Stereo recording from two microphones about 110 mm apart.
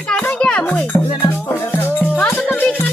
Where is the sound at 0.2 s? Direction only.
15° left (ahead or behind).